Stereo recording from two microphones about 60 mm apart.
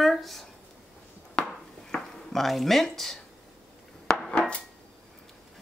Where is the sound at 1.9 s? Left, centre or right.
Centre.